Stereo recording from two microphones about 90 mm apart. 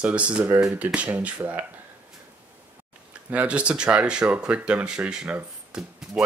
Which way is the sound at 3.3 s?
15° right (ahead or behind).